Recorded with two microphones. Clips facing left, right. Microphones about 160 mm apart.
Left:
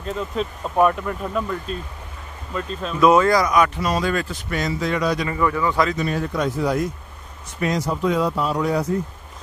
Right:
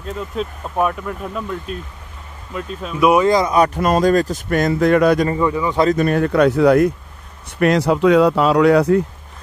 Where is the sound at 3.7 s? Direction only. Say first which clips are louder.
Right 7 dB; 50° right (ahead or behind).